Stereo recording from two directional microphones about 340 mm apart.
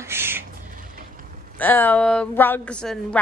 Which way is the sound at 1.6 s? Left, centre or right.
Centre.